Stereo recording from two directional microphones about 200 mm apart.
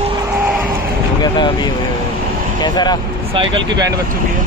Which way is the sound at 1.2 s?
20° left (ahead or behind).